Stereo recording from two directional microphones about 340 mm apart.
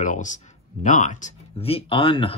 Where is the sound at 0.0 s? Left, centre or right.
Left.